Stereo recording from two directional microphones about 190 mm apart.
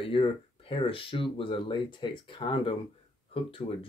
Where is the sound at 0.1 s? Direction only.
25° left (ahead or behind).